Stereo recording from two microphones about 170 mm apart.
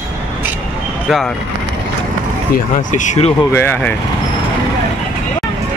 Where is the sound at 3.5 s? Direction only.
10° left (ahead or behind).